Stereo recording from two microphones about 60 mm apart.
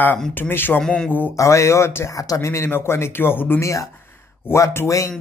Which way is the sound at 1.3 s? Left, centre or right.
Left.